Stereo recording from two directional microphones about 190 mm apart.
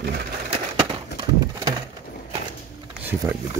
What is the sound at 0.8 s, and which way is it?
Pigeon, 30° right (ahead or behind).